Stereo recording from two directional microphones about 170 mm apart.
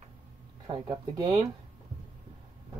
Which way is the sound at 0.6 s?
25° right (ahead or behind).